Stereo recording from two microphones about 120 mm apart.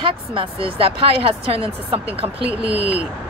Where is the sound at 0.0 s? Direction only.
45° right (ahead or behind).